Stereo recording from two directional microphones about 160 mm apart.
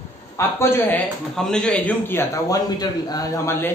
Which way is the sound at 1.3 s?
5° left (ahead or behind).